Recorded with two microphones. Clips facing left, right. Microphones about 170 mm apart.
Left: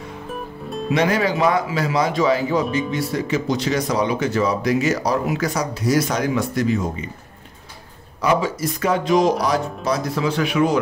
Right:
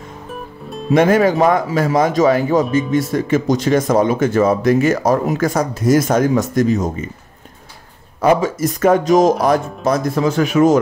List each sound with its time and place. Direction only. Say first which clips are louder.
0.3 s music: even; centre (ahead or behind)
0.8 s speech: right 7 dB; 45° right (ahead or behind)
8.2 s speech: right 5 dB; 50° right (ahead or behind)